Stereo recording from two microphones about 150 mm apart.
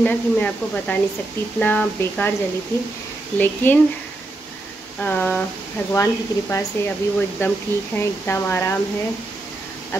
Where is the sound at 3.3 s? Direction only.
10° left (ahead or behind).